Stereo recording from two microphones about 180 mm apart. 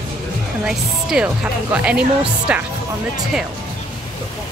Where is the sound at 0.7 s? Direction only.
5° right (ahead or behind).